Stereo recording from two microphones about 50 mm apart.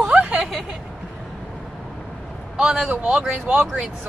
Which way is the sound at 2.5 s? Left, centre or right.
Centre.